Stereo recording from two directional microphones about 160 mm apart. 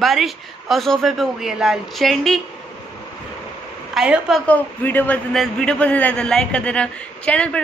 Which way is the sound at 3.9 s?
5° right (ahead or behind).